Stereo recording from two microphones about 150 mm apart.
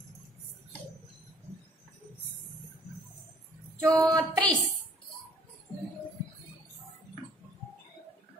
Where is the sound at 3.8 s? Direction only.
20° right (ahead or behind).